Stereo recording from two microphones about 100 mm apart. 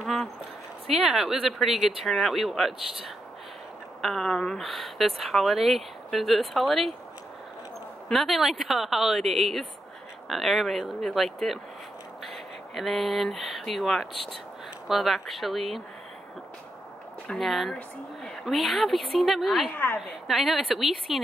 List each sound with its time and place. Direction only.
0.0 s a sound: centre (ahead or behind)
0.8 s speech: centre (ahead or behind)
4.0 s speech: 5° left (ahead or behind)
8.1 s speech: centre (ahead or behind)
12.7 s speech: centre (ahead or behind)
17.3 s speech: centre (ahead or behind)
19.7 s a woman's voice: 20° left (ahead or behind)
20.2 s speech: centre (ahead or behind)